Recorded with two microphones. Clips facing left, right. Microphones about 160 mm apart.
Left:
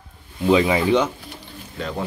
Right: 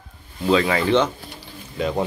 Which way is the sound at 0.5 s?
15° left (ahead or behind).